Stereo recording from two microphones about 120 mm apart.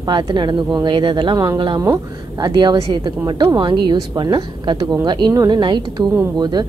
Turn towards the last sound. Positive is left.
turn(degrees=-35)  # may be behind; listen again after turning